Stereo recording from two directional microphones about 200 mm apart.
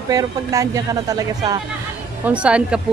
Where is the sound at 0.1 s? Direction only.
15° right (ahead or behind).